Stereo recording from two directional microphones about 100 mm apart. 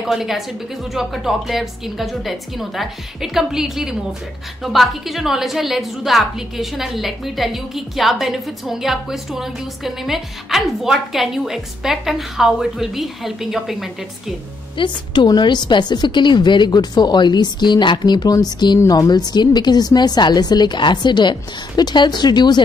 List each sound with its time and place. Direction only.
0.0 s a woman's voice: centre (ahead or behind)
14.8 s a woman's voice: 45° left (ahead or behind)